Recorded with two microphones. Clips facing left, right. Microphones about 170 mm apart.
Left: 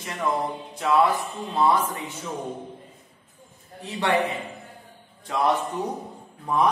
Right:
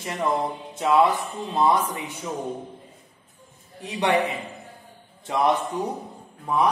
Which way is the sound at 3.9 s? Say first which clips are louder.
Right 1 dB; 15° right (ahead or behind).